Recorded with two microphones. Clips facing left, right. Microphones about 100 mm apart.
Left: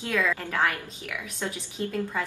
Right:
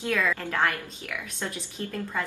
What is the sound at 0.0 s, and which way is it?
A woman's voice, 10° left (ahead or behind).